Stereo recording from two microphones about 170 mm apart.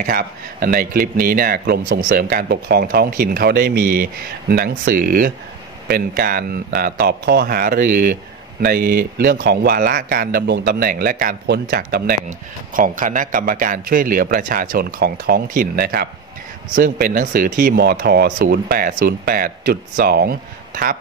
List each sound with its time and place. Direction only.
0.0 s speech: 60° right (ahead or behind)
12.3 s speech: 55° right (ahead or behind)
16.7 s speech: 55° right (ahead or behind)